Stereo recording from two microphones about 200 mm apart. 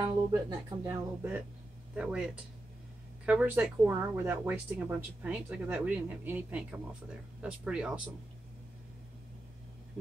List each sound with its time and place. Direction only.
0.0 s speech: 15° right (ahead or behind)
2.0 s speech: 5° right (ahead or behind)